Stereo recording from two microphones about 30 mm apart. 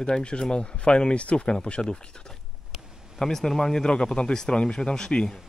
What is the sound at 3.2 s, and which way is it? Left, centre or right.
Speech, centre.